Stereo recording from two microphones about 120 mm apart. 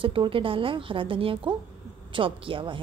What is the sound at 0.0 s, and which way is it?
A woman's voice, 50° right (ahead or behind).